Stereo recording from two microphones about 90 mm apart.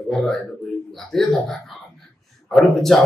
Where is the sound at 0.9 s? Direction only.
5° left (ahead or behind).